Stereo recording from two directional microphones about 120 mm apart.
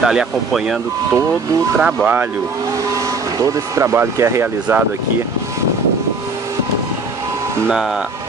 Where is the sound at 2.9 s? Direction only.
30° right (ahead or behind).